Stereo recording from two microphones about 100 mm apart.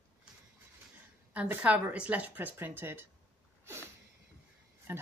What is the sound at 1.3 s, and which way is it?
Speech, 15° right (ahead or behind).